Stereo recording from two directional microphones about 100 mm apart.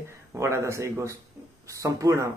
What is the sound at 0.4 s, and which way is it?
Speech, 25° right (ahead or behind).